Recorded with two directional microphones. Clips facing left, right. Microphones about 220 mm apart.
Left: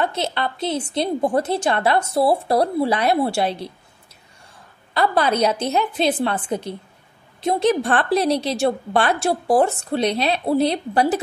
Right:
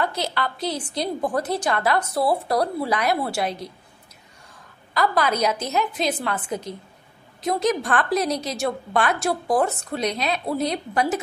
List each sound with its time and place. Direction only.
0.0 s a woman's voice: 25° left (ahead or behind)
4.9 s a woman's voice: 30° left (ahead or behind)